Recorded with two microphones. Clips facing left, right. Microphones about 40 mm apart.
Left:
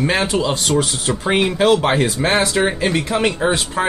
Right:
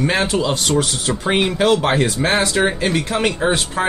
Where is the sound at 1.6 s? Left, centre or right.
Centre.